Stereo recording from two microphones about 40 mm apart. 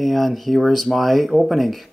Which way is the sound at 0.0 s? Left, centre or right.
Centre.